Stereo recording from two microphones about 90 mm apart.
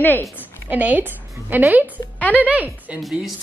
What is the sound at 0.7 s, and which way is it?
A woman's voice, 20° right (ahead or behind).